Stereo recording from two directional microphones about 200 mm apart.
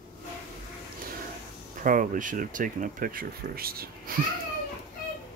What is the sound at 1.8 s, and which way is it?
Speech, 40° right (ahead or behind).